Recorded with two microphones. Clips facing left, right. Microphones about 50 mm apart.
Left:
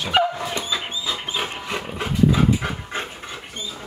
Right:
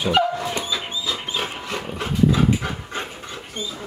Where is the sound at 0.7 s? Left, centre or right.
Centre.